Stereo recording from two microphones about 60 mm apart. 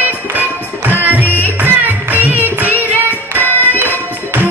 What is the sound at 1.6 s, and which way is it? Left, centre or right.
Music, right.